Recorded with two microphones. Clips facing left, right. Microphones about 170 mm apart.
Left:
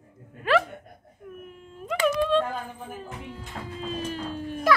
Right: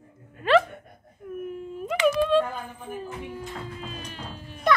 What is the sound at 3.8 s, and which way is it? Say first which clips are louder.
Music: left 7 dB; 35° left (ahead or behind).